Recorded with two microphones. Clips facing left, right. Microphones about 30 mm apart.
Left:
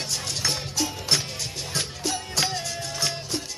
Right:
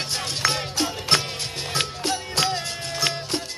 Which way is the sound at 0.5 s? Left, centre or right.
Right.